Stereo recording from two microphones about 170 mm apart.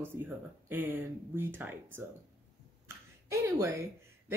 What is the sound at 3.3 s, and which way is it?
Speech, 15° right (ahead or behind).